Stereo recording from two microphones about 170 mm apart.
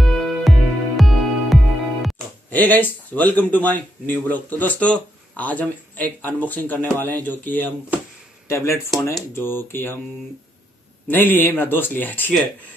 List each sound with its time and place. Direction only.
0.0 s music: centre (ahead or behind)
2.5 s speech: 10° left (ahead or behind)
11.1 s speech: 10° left (ahead or behind)